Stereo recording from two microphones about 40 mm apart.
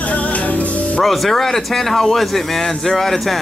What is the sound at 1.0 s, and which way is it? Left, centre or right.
Speech, centre.